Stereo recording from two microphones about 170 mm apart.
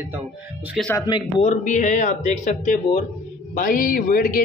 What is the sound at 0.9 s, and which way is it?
Speech, 25° left (ahead or behind).